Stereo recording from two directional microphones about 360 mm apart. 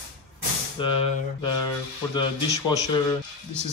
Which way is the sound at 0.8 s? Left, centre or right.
Centre.